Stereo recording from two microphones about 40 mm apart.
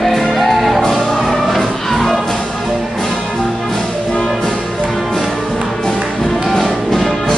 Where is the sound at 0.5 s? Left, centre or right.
Centre.